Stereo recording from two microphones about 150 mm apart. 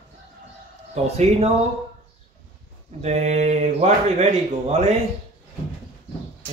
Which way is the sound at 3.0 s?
50° right (ahead or behind).